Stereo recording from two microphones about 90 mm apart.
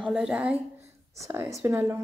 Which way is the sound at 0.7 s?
35° right (ahead or behind).